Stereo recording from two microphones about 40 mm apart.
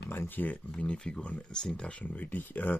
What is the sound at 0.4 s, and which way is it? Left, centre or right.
Speech, left.